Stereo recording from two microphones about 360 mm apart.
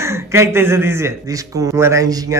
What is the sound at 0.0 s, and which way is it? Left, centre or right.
Speech, centre.